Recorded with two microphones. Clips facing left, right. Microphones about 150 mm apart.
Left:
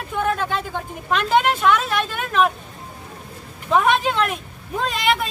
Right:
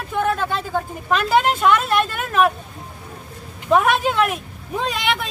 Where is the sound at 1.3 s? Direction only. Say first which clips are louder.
Even; 10° right (ahead or behind).